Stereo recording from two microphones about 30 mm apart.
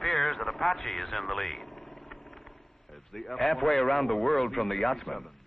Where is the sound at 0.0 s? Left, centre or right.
Centre.